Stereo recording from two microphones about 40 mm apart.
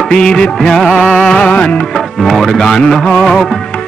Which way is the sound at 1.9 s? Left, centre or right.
Centre.